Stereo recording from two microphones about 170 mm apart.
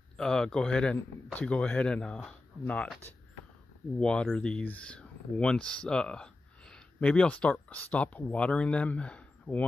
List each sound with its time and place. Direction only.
0.2 s a man's voice: 5° left (ahead or behind)